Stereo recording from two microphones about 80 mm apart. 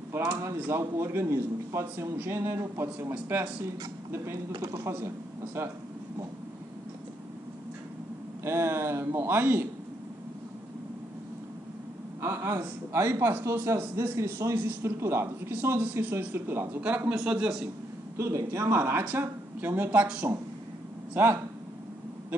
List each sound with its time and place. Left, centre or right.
0.1 s a man's voice: right
4.5 s speech: right
4.9 s speech: right
8.5 s a man's voice: right
12.2 s a man's voice: right
17.1 s a man's voice: centre
18.1 s a man's voice: right
21.1 s speech: right